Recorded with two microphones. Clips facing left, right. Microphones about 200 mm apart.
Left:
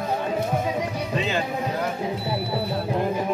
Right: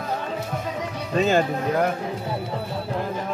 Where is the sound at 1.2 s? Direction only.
45° right (ahead or behind).